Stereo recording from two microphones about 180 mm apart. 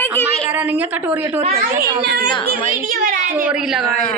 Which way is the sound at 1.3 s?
40° right (ahead or behind).